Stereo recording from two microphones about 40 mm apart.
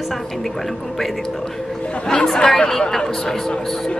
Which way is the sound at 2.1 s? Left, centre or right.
Centre.